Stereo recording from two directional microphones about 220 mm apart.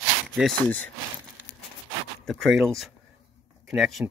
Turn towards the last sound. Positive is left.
turn(degrees=0)  # may be behind; listen again after turning